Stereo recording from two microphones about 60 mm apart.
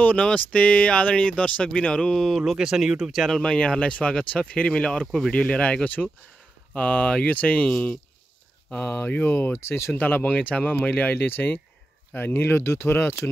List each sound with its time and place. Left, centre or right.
0.0 s speech: left
2.2 s speech: centre
3.3 s speech: centre
8.7 s speech: left
9.9 s speech: left
11.2 s speech: left